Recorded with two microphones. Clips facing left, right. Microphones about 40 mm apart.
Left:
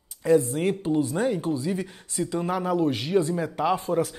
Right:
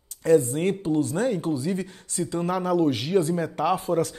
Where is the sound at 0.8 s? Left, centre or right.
Centre.